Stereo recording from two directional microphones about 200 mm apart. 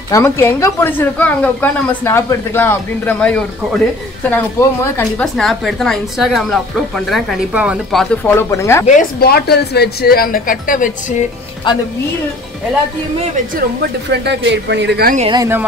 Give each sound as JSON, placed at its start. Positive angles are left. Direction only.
{"t": 0.1, "sound": "a woman's voice", "side_deg": 15}
{"t": 8.8, "sound": "speech", "side_deg": 45}
{"t": 14.2, "sound": "speech", "side_deg": -60}
{"t": 15.1, "sound": "speech", "side_deg": -25}